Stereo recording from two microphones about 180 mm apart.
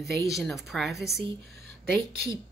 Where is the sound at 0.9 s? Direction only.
65° right (ahead or behind).